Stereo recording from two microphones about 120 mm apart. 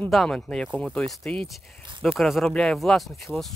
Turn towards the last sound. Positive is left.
turn(degrees=0)  # may be behind; listen again after turning